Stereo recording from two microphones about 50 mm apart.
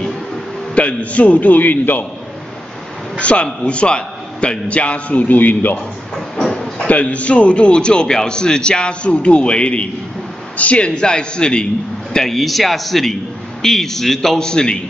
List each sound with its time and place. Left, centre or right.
0.7 s a man's voice: left
3.2 s a man's voice: left
6.5 s a sound: centre
6.9 s a man's voice: left